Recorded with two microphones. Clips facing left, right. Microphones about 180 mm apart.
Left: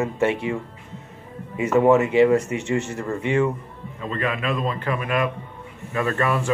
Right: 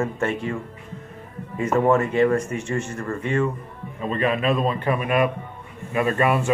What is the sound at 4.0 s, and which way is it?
Speech, 20° right (ahead or behind).